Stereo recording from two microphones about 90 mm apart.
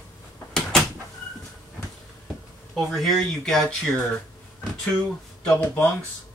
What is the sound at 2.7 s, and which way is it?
Speech, centre (ahead or behind).